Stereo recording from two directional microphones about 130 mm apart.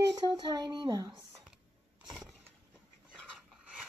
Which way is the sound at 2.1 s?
Centre (ahead or behind).